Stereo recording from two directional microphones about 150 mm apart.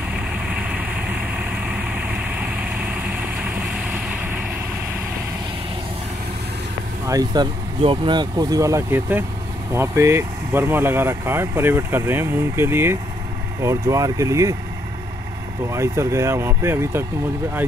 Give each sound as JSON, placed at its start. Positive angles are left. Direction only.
{"t": 7.1, "sound": "speech", "side_deg": -25}
{"t": 7.8, "sound": "speech", "side_deg": -35}
{"t": 15.7, "sound": "speech", "side_deg": -20}